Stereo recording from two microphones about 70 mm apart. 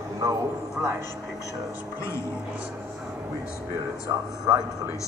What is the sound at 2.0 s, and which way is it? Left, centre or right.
Speech, left.